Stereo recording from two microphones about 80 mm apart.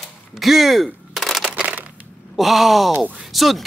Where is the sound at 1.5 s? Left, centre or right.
Centre.